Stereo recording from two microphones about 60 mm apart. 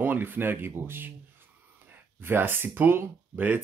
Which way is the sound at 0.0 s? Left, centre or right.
Right.